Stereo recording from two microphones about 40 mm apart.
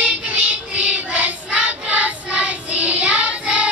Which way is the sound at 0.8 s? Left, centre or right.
Right.